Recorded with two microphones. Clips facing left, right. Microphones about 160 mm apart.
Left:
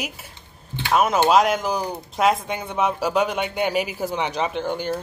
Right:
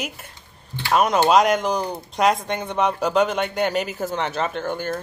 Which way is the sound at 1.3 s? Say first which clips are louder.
Right 1 dB; centre (ahead or behind).